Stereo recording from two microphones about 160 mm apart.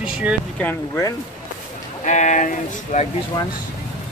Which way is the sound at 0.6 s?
10° left (ahead or behind).